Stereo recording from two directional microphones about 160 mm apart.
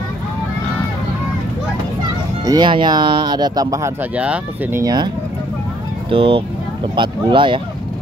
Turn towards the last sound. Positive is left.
turn(degrees=-30)  # may be behind; listen again after turning